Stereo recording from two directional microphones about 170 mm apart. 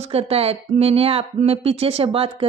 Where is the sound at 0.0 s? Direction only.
35° right (ahead or behind).